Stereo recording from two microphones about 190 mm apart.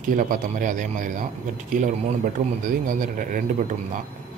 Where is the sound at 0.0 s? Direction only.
45° right (ahead or behind).